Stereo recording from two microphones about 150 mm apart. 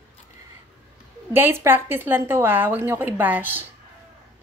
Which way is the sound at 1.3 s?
15° right (ahead or behind).